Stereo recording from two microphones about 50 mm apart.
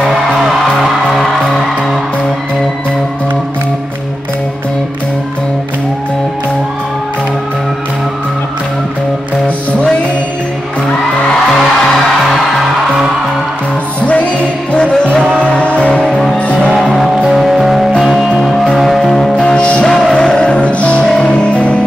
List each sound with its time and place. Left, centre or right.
9.7 s music: left
14.0 s music: left
16.9 s music: centre
19.4 s music: left
19.8 s music: centre; by 21.0 s left
21.0 s music: centre